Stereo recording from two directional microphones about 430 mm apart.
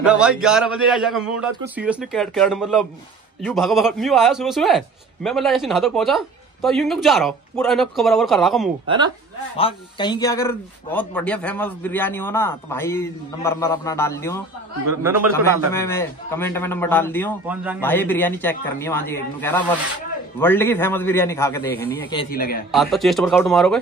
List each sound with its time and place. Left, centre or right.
0.0 s a man's voice: centre
8.8 s speech: centre
9.6 s a man's voice: centre
14.9 s a man's voice: centre
15.7 s a man's voice: centre
22.7 s a man's voice: centre